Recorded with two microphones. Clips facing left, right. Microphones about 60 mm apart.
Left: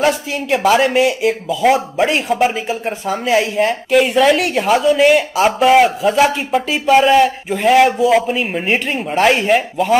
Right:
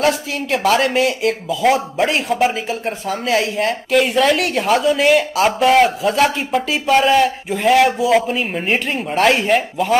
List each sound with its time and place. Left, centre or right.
0.0 s speech: centre